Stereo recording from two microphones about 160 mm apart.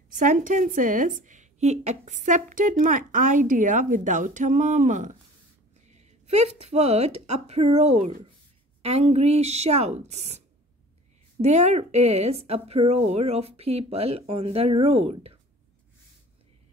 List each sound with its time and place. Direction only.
0.2 s a woman's voice: 55° right (ahead or behind)
11.4 s speech: 45° right (ahead or behind)